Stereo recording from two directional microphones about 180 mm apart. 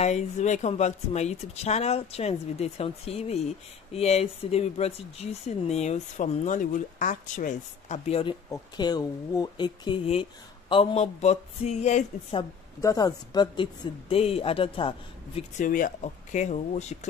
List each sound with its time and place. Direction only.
0.0 s speech: 40° left (ahead or behind)
12.8 s speech: 20° left (ahead or behind)
15.6 s speech: 50° left (ahead or behind)